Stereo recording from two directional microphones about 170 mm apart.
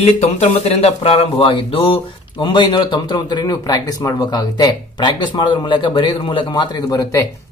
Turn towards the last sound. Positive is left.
turn(degrees=20)  # may be behind; listen again after turning